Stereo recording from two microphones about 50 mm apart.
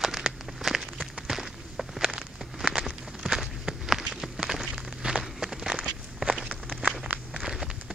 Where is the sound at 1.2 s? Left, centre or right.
Centre.